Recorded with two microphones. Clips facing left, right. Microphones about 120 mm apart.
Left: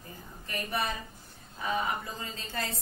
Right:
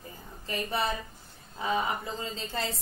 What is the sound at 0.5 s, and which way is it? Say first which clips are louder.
A woman's voice: right 3 dB; 25° right (ahead or behind).